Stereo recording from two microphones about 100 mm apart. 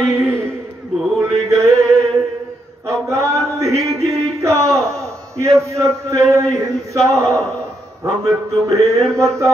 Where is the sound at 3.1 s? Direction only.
30° right (ahead or behind).